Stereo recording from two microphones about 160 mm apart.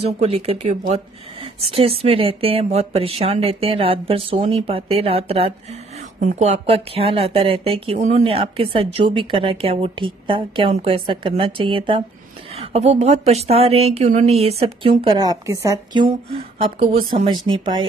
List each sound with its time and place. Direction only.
0.0 s speech: 40° right (ahead or behind)
6.1 s speech: 50° right (ahead or behind); by 17.8 s 30° right (ahead or behind)